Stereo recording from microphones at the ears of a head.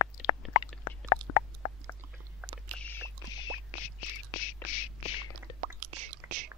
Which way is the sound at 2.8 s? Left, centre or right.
Left.